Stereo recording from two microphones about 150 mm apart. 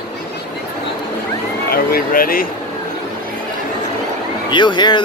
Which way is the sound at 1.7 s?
75° left (ahead or behind).